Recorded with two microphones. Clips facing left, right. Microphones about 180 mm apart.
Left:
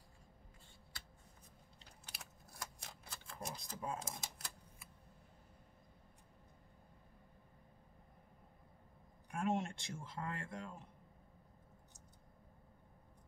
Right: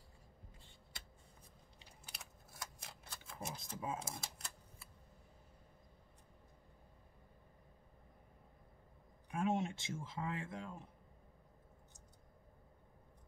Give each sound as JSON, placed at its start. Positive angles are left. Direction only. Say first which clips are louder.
{"t": 2.1, "sound": "camera", "louder": "left 1 dB", "side_deg": 0}
{"t": 9.3, "sound": "speech", "louder": "right 1 dB", "side_deg": 0}